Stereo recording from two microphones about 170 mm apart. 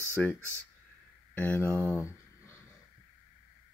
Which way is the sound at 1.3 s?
10° left (ahead or behind).